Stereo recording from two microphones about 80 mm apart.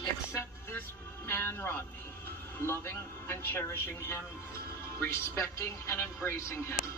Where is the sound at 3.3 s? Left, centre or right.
Left.